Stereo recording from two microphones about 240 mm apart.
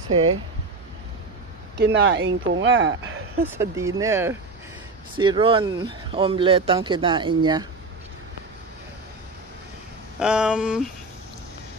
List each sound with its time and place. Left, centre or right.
0.1 s speech: right
1.8 s speech: right
3.5 s speech: centre
10.1 s a sound: centre